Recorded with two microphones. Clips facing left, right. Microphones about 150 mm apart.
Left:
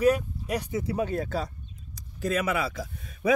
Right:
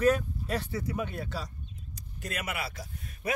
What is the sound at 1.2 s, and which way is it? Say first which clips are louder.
Speech: left 7 dB; 50° left (ahead or behind).